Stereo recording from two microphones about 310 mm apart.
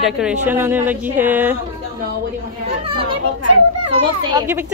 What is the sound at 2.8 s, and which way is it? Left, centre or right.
Children playing, centre.